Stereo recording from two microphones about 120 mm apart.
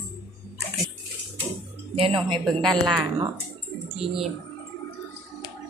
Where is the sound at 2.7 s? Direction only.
40° right (ahead or behind).